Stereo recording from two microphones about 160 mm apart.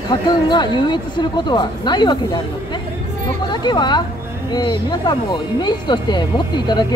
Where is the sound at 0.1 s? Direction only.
30° left (ahead or behind).